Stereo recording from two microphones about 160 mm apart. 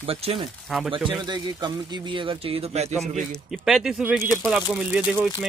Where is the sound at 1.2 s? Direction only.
25° right (ahead or behind).